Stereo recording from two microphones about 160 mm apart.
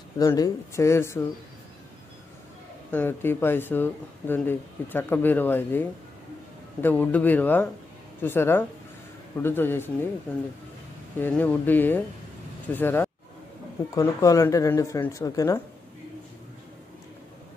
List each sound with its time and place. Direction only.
0.2 s speech: 20° left (ahead or behind)
2.9 s speech: 10° left (ahead or behind)
11.1 s speech: 10° left (ahead or behind)